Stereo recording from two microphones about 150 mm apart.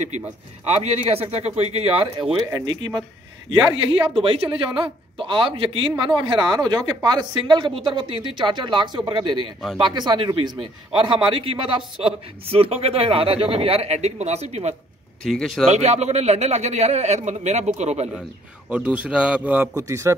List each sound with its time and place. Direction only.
0.7 s a man's voice: 45° right (ahead or behind)
3.9 s a man's voice: 35° right (ahead or behind)
15.2 s speech: centre (ahead or behind)
15.7 s a man's voice: 50° right (ahead or behind)
18.7 s a man's voice: 10° right (ahead or behind)